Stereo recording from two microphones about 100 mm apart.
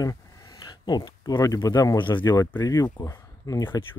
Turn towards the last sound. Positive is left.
turn(degrees=35)  # may be behind; listen again after turning